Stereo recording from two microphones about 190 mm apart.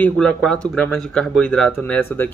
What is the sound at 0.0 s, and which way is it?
Speech, 5° left (ahead or behind).